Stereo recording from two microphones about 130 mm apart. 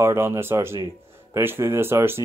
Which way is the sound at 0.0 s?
20° right (ahead or behind).